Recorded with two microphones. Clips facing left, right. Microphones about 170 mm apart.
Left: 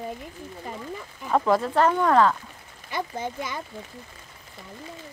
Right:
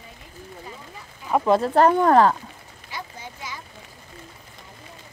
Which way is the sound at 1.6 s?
35° right (ahead or behind).